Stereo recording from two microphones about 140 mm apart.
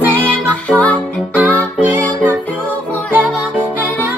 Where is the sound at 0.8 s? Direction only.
10° left (ahead or behind).